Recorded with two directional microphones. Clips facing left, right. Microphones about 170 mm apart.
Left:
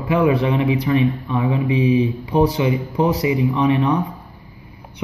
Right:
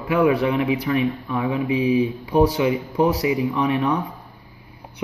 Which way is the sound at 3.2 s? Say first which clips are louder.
Left 2 dB; 20° left (ahead or behind).